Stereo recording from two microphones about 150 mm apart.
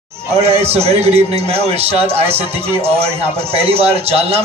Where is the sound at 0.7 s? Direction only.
45° right (ahead or behind).